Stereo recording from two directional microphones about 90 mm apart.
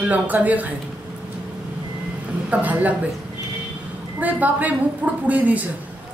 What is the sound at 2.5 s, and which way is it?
Speech, 15° right (ahead or behind).